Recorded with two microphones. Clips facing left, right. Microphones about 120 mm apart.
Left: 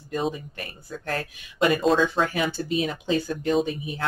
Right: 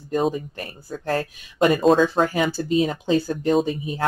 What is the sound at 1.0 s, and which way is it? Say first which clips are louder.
Speech: right 6 dB; 35° right (ahead or behind).